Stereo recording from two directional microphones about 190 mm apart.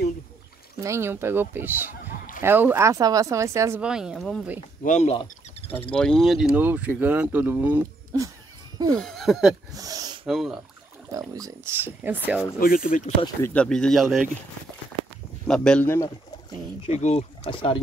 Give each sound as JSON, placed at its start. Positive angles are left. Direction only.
{"t": 0.7, "sound": "speech", "side_deg": -15}
{"t": 3.8, "sound": "speech", "side_deg": -5}
{"t": 4.8, "sound": "speech", "side_deg": 40}
{"t": 5.9, "sound": "speech", "side_deg": 5}
{"t": 8.9, "sound": "speech", "side_deg": 0}
{"t": 9.8, "sound": "snort", "side_deg": -20}
{"t": 10.2, "sound": "speech", "side_deg": 0}
{"t": 11.1, "sound": "speech", "side_deg": -20}
{"t": 12.5, "sound": "speech", "side_deg": 50}
{"t": 13.2, "sound": "speech", "side_deg": 10}
{"t": 15.4, "sound": "speech", "side_deg": 5}
{"t": 16.8, "sound": "speech", "side_deg": 35}